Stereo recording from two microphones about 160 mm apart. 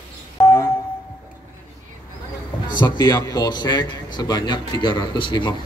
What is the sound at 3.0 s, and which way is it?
A man's voice, 25° left (ahead or behind).